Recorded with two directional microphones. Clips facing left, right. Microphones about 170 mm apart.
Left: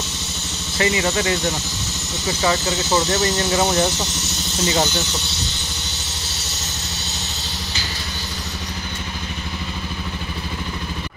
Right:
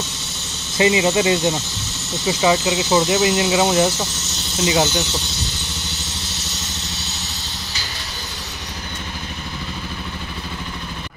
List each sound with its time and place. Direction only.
0.7 s speech: 20° right (ahead or behind)